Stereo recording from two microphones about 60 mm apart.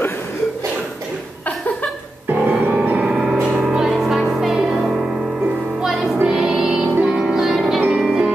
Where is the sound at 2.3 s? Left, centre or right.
Right.